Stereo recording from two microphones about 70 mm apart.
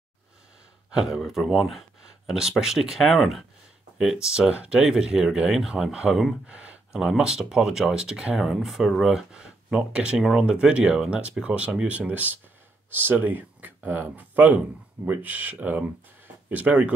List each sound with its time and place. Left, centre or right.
0.8 s speech: centre
4.0 s speech: centre
6.4 s a sound: centre
7.0 s speech: centre